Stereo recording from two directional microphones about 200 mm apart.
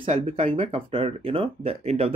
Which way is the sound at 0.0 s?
30° right (ahead or behind).